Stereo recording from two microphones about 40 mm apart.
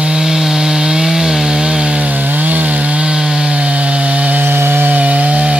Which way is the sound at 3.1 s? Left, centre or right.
Right.